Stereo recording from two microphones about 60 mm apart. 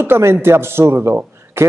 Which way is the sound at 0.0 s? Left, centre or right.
Right.